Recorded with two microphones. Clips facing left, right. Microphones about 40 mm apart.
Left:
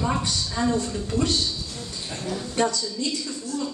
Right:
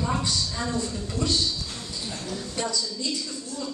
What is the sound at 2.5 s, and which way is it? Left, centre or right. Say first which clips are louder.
Speech: left 6 dB; left.